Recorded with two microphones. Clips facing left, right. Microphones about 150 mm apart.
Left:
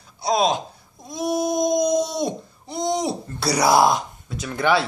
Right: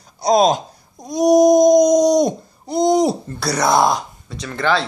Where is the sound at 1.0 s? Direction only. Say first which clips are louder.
Right 11 dB; 40° right (ahead or behind).